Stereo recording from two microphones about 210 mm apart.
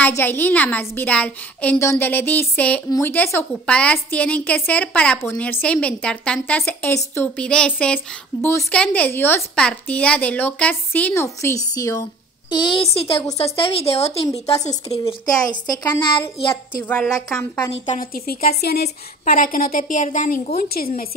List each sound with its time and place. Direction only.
0.0 s a woman's voice: 10° left (ahead or behind)
16.8 s a woman's voice: 5° left (ahead or behind)
18.1 s a woman's voice: 45° left (ahead or behind)